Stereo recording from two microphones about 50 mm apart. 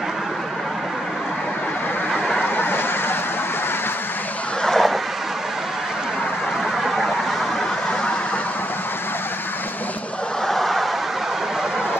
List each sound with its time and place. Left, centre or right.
2.5 s vehicle: left
4.6 s vehicle: centre
10.4 s snicker: centre